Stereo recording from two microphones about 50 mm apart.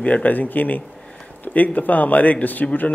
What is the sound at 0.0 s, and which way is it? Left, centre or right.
Speech, left.